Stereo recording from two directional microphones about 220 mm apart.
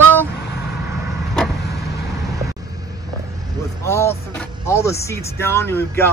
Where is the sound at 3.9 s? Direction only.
10° left (ahead or behind).